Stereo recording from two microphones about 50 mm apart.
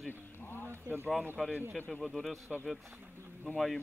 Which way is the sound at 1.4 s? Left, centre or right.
Centre.